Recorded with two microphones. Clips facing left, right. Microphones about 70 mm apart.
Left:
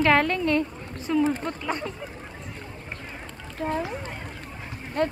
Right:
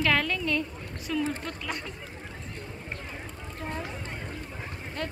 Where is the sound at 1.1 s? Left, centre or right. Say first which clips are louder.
Left 7 dB; left.